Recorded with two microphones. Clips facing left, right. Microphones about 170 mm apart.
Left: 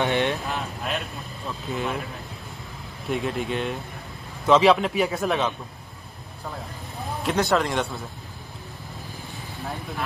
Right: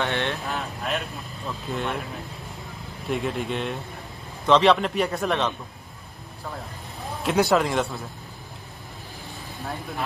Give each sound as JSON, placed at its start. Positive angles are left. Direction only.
{"t": 0.0, "sound": "speech", "side_deg": 15}
{"t": 0.5, "sound": "speech", "side_deg": 0}
{"t": 3.1, "sound": "speech", "side_deg": 0}
{"t": 7.2, "sound": "speech", "side_deg": -5}